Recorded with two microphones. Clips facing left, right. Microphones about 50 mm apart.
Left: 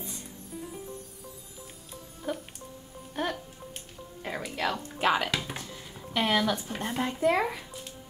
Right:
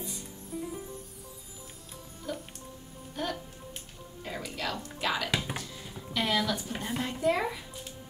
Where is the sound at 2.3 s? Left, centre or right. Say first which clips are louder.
Left 3 dB; left.